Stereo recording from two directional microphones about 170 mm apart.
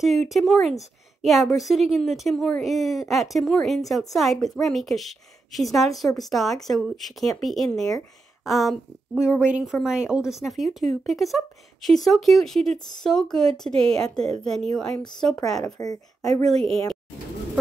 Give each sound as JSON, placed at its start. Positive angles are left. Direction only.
{"t": 0.0, "sound": "a woman's voice", "side_deg": 0}
{"t": 15.6, "sound": "speech", "side_deg": 20}
{"t": 16.4, "sound": "a woman's voice", "side_deg": 5}